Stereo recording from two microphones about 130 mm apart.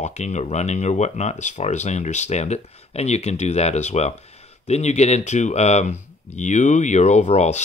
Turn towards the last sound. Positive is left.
turn(degrees=60)  # may be behind; listen again after turning